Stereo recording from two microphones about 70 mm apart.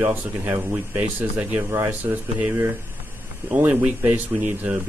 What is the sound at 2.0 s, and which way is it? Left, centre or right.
A man's voice, right.